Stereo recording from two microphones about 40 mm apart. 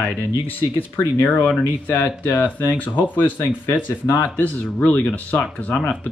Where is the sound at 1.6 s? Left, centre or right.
Left.